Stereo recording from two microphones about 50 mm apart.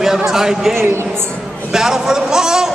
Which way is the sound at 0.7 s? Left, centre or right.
Right.